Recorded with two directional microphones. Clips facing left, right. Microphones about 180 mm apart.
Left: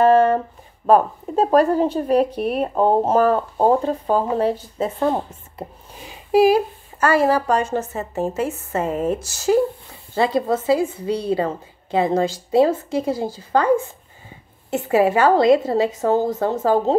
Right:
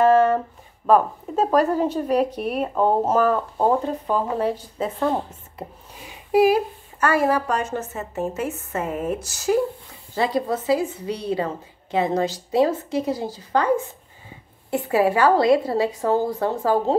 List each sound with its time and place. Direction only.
0.0 s a sound: 30° left (ahead or behind)
0.8 s speech: 30° left (ahead or behind)
6.3 s a woman's voice: 30° left (ahead or behind)
14.9 s speech: 25° left (ahead or behind)